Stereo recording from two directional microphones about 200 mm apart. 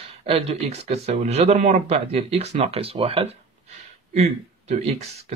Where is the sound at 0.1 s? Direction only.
30° right (ahead or behind).